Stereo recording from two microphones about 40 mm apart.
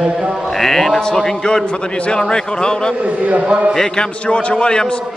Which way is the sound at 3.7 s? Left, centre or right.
Centre.